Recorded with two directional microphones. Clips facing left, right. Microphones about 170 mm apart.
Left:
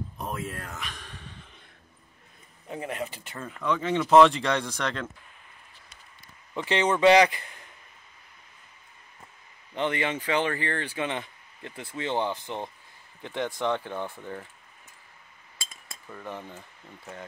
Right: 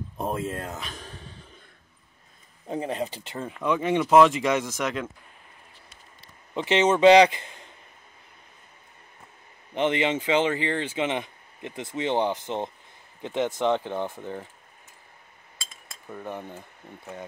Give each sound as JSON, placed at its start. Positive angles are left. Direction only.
{"t": 0.2, "sound": "a sound", "side_deg": -25}
{"t": 2.7, "sound": "speech", "side_deg": -30}
{"t": 6.5, "sound": "a man's voice", "side_deg": -20}
{"t": 9.8, "sound": "speech", "side_deg": -20}
{"t": 16.1, "sound": "speech", "side_deg": -15}